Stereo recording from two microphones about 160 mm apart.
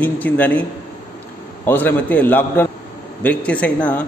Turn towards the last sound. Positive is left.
turn(degrees=10)  # may be behind; listen again after turning